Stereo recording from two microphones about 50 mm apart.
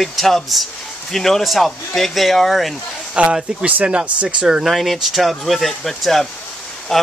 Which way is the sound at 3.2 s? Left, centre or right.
Right.